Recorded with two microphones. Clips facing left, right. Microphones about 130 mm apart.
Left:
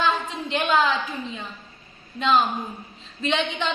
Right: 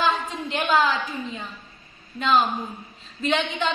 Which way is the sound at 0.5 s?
Centre (ahead or behind).